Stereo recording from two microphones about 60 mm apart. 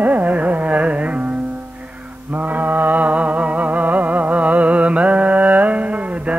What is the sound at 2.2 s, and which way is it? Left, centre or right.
Music, right.